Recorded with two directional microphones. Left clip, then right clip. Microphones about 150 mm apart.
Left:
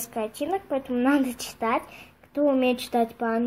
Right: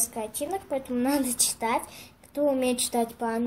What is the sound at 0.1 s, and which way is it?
Speech, 35° left (ahead or behind).